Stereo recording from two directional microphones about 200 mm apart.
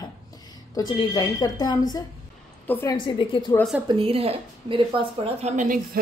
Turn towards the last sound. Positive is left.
turn(degrees=-35)  # may be behind; listen again after turning